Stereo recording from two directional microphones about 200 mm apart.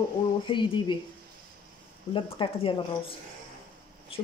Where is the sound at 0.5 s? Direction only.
25° left (ahead or behind).